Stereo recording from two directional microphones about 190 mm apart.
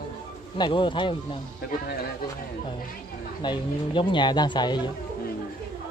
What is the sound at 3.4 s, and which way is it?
A man's voice, 25° left (ahead or behind).